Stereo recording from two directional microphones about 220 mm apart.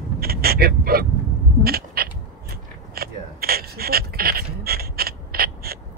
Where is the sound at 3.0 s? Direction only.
45° right (ahead or behind).